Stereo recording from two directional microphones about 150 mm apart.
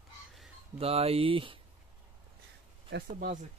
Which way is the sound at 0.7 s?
40° right (ahead or behind).